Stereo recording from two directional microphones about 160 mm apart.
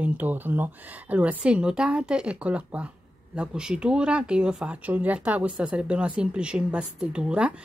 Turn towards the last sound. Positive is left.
turn(degrees=-5)  # may be behind; listen again after turning